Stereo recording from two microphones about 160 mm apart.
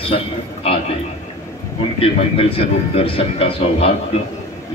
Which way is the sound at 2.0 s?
35° left (ahead or behind).